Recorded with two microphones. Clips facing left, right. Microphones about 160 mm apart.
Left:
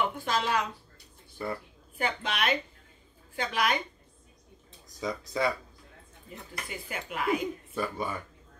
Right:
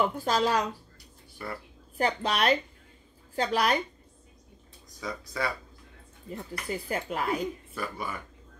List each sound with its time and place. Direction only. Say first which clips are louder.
0.0 s speech: right 4 dB; 40° right (ahead or behind)
1.4 s speech: left 4 dB; 25° left (ahead or behind)
2.0 s speech: right 4 dB; 40° right (ahead or behind)
5.0 s speech: left 3 dB; 25° left (ahead or behind)
6.3 s speech: right 6 dB; 40° right (ahead or behind)
7.7 s speech: left 3 dB; 20° left (ahead or behind)